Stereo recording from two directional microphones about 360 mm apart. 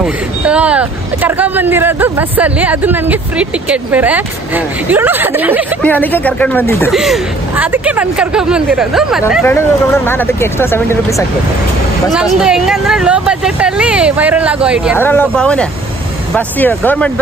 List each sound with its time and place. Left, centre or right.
0.0 s speech: centre